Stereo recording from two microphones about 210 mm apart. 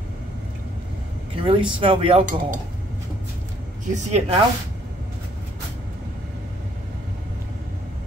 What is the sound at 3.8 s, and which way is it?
Speech, 35° right (ahead or behind).